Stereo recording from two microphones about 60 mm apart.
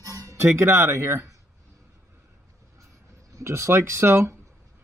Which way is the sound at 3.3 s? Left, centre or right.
Right.